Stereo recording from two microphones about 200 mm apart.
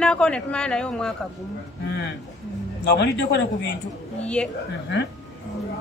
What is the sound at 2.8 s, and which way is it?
Speech, 60° left (ahead or behind).